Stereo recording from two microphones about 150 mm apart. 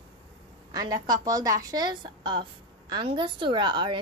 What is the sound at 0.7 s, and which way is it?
A woman's voice, 25° right (ahead or behind).